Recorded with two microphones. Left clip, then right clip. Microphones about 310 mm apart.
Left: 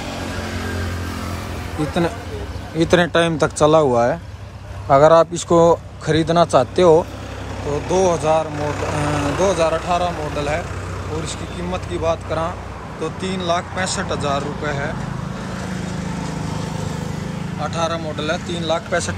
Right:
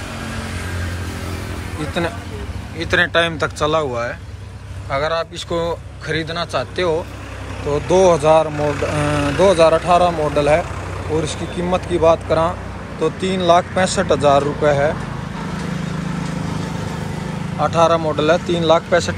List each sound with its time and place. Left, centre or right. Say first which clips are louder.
2.8 s a man's voice: even; centre
7.7 s speech: right 4 dB; centre
8.5 s a man's voice: right 3 dB; left
9.4 s speech: right 7 dB; centre
17.6 s speech: right 8 dB; centre